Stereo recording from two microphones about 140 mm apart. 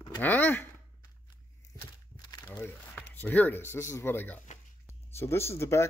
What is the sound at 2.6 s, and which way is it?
Speech, 15° left (ahead or behind).